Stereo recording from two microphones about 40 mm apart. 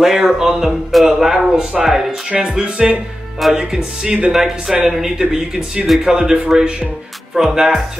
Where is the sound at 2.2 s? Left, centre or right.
Right.